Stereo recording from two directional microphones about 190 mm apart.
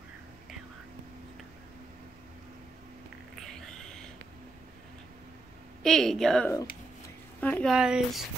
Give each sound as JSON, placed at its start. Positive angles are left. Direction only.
{"t": 3.3, "sound": "a sound", "side_deg": 0}
{"t": 5.8, "sound": "a woman's voice", "side_deg": 5}
{"t": 7.7, "sound": "a woman's voice", "side_deg": -5}